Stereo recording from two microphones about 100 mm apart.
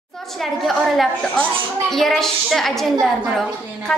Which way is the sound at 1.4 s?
5° left (ahead or behind).